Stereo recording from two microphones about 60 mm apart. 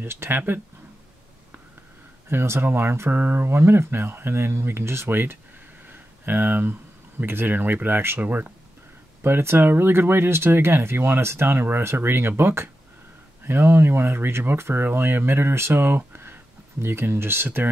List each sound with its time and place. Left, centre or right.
0.0 s speech: right
2.2 s speech: right
5.9 s a sound: right
7.2 s speech: right
9.2 s speech: right